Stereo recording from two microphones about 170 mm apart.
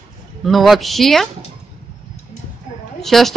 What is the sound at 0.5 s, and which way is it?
Speech, centre (ahead or behind).